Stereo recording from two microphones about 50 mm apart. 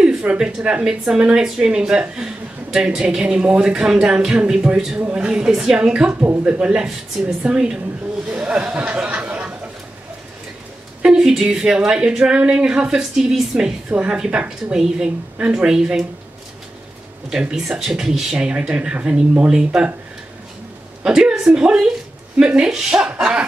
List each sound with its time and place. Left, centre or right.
0.4 s a woman's voice: centre; by 9.4 s right
11.0 s a woman's voice: centre
17.3 s a woman's voice: centre
21.0 s a woman's voice: centre